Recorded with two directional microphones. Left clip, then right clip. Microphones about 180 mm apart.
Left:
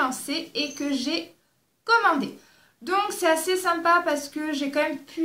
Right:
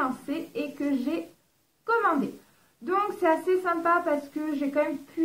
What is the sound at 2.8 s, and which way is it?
A woman's voice, 15° left (ahead or behind).